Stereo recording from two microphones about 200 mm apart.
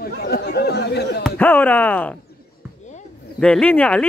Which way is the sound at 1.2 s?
10° left (ahead or behind).